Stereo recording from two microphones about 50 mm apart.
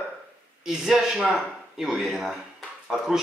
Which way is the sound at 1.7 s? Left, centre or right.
Centre.